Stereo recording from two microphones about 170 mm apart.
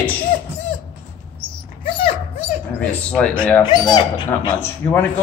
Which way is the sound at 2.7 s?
5° left (ahead or behind).